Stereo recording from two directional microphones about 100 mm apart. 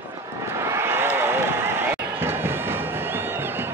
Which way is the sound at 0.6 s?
25° right (ahead or behind).